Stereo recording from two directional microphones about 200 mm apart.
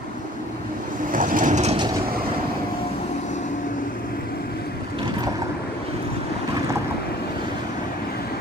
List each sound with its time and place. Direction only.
1.1 s vehicle: 40° right (ahead or behind)